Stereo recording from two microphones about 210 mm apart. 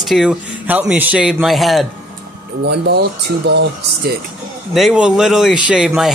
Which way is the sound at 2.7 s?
50° right (ahead or behind).